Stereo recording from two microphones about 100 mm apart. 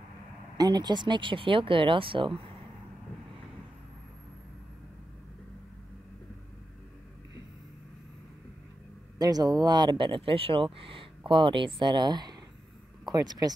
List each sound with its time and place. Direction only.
0.6 s speech: 45° right (ahead or behind)
9.2 s speech: 40° right (ahead or behind)